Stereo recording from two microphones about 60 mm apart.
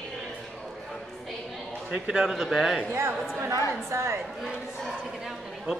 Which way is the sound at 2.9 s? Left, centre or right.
Right.